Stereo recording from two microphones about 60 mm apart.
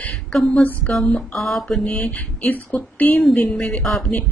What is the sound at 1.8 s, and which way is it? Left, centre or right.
A woman's voice, centre.